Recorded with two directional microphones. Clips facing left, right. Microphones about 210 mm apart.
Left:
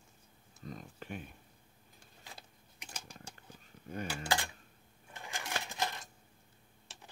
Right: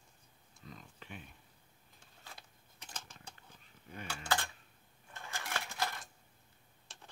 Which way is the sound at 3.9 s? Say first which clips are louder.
Left 8 dB; 50° left (ahead or behind).